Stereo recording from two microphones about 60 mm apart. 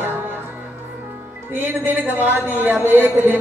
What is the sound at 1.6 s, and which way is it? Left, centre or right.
A woman's voice, right.